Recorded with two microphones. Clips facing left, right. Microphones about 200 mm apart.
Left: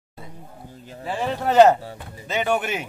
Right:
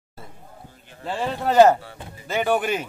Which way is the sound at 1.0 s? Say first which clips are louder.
Left 1 dB; 5° left (ahead or behind).